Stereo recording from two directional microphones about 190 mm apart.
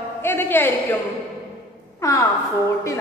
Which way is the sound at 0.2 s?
10° left (ahead or behind).